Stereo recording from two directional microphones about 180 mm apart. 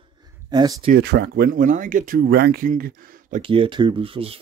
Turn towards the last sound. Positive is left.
turn(degrees=-30)  # may be behind; listen again after turning